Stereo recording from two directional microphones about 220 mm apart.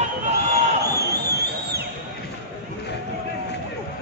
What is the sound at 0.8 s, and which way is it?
Music, 45° right (ahead or behind).